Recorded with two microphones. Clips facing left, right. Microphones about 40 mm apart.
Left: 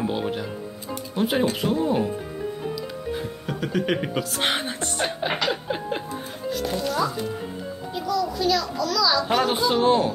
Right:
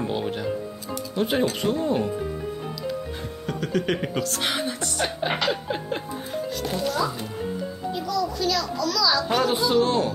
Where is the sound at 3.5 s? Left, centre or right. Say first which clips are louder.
Even; centre.